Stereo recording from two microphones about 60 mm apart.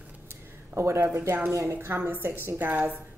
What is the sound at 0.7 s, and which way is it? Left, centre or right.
Speech, right.